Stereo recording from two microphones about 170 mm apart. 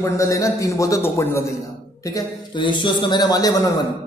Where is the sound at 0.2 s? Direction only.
20° left (ahead or behind).